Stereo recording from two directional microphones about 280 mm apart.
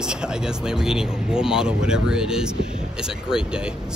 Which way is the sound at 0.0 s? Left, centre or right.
Centre.